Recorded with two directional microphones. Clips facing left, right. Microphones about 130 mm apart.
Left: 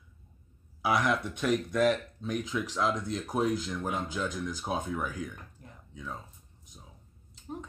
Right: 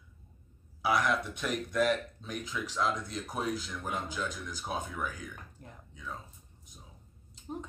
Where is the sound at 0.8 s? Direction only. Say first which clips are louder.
Left 1 dB; centre (ahead or behind).